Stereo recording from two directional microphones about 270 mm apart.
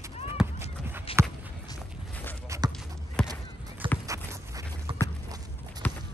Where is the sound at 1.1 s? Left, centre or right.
Left.